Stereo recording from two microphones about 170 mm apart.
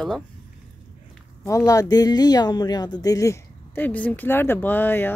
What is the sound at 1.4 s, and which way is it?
Speech, 20° left (ahead or behind).